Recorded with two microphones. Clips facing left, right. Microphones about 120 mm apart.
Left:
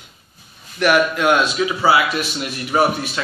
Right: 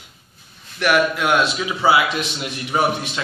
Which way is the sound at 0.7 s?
10° left (ahead or behind).